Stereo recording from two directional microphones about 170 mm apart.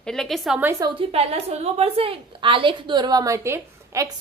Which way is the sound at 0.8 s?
30° right (ahead or behind).